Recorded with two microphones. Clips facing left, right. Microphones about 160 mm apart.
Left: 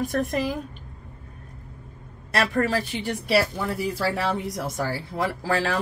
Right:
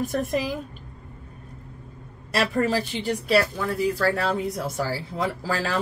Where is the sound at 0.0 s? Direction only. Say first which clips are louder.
Even; centre (ahead or behind).